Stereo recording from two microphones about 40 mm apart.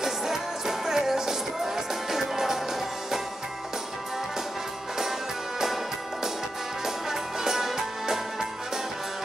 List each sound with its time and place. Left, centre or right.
0.0 s music: centre
6.8 s music: centre